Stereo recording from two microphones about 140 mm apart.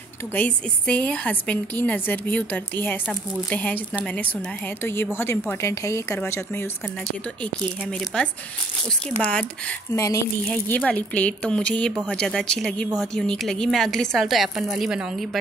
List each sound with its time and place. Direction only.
0.3 s a woman's voice: 10° left (ahead or behind)
7.8 s a woman's voice: 5° left (ahead or behind)
9.9 s speech: 20° left (ahead or behind)
10.9 s a woman's voice: 10° left (ahead or behind)